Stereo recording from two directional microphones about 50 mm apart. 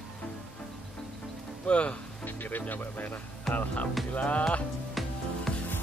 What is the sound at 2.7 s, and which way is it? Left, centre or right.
Speech, left.